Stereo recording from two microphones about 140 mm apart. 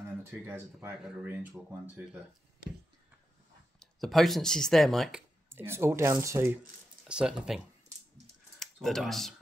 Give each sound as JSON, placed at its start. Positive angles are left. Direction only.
{"t": 0.5, "sound": "speech", "side_deg": -15}
{"t": 3.8, "sound": "speech", "side_deg": 0}
{"t": 5.5, "sound": "speech", "side_deg": -15}
{"t": 7.1, "sound": "speech", "side_deg": -5}
{"t": 8.8, "sound": "speech", "side_deg": 0}